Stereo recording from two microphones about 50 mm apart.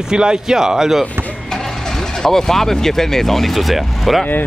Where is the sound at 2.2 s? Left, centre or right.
Centre.